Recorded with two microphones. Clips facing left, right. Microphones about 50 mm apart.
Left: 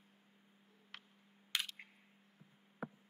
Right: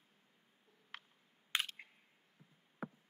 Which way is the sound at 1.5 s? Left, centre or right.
Right.